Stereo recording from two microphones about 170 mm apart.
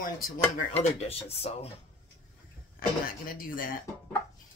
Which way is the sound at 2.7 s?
55° left (ahead or behind).